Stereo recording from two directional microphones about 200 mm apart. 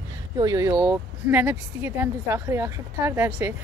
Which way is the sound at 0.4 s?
15° right (ahead or behind).